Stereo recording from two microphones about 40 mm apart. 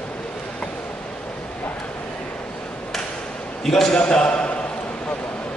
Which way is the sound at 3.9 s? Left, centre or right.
Left.